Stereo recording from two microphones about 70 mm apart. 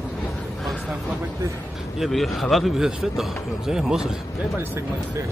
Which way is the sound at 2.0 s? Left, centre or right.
Centre.